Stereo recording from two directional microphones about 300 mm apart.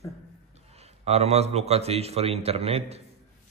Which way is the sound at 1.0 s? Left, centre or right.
Right.